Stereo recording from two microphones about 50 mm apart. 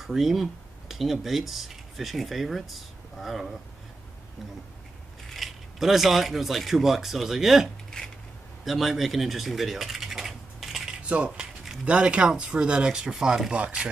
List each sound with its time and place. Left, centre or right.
0.0 s speech: centre
5.3 s speech: centre
7.9 s dishes: centre
8.6 s a sound: centre
11.0 s coin: right
11.8 s speech: right